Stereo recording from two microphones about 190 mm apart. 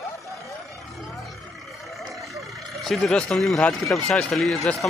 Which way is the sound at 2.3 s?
Centre (ahead or behind).